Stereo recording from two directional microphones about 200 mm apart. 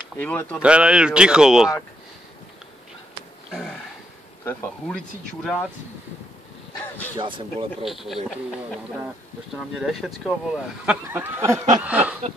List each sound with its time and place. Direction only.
0.2 s speech: 10° left (ahead or behind)
0.6 s speech: 5° right (ahead or behind)
4.5 s speech: 5° left (ahead or behind)
7.2 s a man's voice: 25° right (ahead or behind)
7.8 s speech: centre (ahead or behind)
9.8 s speech: centre (ahead or behind)
11.8 s snicker: 5° right (ahead or behind)